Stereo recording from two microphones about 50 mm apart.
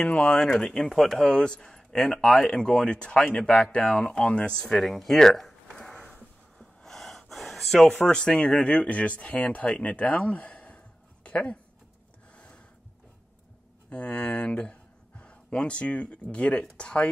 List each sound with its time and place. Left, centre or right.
0.0 s speech: left
0.5 s speech: centre
1.3 s speech: centre
4.7 s a sound: centre
7.9 s speech: centre
12.4 s a sound: centre
13.8 s speech: left